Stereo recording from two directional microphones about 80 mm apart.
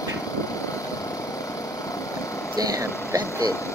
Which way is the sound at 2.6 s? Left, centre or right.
Right.